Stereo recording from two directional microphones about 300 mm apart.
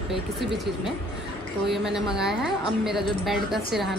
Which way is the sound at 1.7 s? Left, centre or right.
Centre.